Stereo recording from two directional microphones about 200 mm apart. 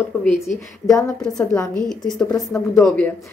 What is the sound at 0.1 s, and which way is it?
Speech, 10° left (ahead or behind).